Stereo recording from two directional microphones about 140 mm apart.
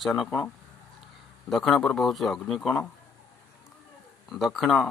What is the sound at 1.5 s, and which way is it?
Speech, centre (ahead or behind).